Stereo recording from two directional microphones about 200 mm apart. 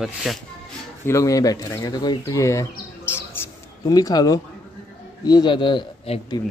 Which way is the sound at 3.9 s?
20° left (ahead or behind).